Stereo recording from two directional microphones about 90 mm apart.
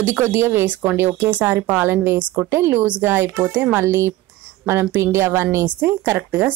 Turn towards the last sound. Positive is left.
turn(degrees=-25)  # may be behind; listen again after turning